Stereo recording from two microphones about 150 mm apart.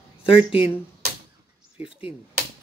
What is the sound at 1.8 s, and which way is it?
Speech, 35° left (ahead or behind).